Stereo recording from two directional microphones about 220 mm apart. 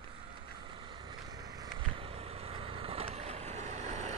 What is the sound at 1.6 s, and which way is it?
Vehicle, 25° right (ahead or behind).